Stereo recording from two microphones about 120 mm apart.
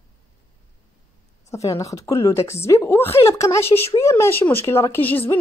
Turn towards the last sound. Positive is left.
turn(degrees=15)  # may be behind; listen again after turning